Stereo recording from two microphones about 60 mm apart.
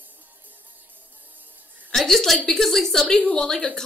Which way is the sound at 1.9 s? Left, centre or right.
Centre.